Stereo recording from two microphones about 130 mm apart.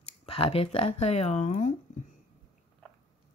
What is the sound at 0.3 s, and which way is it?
Speech, 45° left (ahead or behind).